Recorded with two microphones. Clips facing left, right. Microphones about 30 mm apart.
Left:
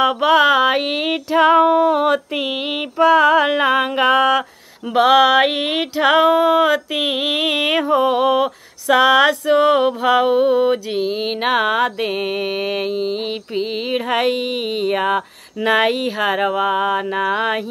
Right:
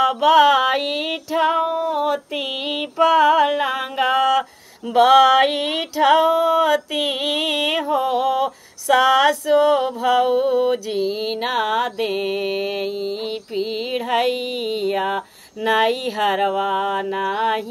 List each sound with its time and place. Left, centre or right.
0.0 s mantra: centre
1.4 s female singing: left
2.3 s mantra: centre; by 4.0 s left
4.0 s a sound: left
4.9 s a sound: centre
5.9 s mantra: left
6.7 s mantra: centre; by 8.5 s left
8.8 s mantra: centre
9.6 s mantra: left
11.4 s a sound: left
12.0 s mantra: centre
15.9 s mantra: centre